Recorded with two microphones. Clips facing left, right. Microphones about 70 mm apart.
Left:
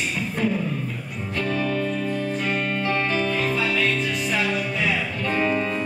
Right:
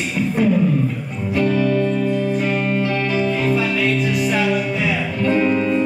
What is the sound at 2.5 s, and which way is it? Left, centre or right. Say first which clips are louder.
Music: right 5 dB; right.